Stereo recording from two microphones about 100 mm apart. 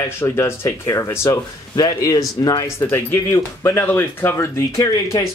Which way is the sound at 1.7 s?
40° left (ahead or behind).